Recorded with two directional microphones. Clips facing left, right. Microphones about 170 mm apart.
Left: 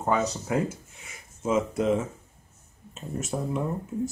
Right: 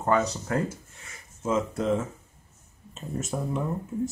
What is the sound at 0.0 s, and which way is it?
Speech, 5° left (ahead or behind).